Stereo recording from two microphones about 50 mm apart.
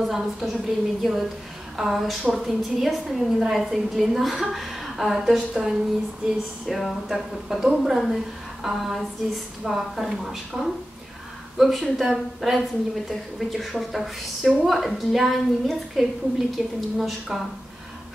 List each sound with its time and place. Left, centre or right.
0.0 s a woman's voice: centre